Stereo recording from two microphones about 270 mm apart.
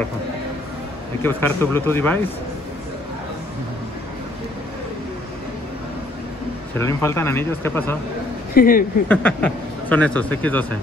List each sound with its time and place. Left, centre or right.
1.2 s speech: centre
6.9 s speech: centre
8.5 s speech: left
9.1 s a man's voice: centre